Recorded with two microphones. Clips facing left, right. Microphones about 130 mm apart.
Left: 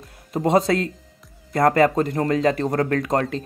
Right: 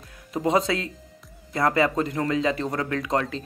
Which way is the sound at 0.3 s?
40° left (ahead or behind).